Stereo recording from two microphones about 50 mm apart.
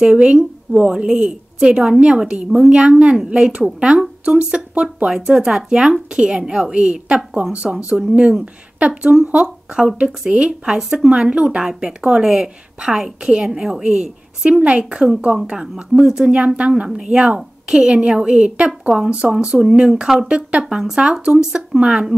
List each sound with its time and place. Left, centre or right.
0.0 s a woman's voice: centre
10.8 s a woman's voice: centre